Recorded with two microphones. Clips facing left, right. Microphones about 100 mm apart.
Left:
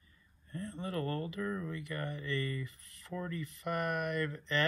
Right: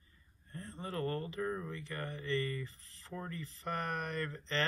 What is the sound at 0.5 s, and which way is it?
Speech, 30° right (ahead or behind).